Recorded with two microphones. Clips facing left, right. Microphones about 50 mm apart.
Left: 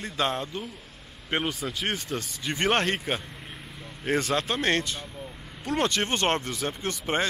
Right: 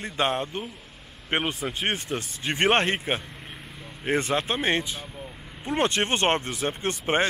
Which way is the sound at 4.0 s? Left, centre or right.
Right.